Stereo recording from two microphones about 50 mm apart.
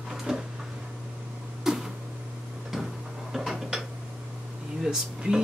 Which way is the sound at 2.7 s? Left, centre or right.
Centre.